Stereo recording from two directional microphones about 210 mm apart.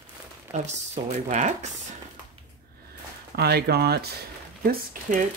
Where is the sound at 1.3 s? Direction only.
35° right (ahead or behind).